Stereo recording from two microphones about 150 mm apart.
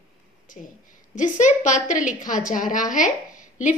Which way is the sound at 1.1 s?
55° left (ahead or behind).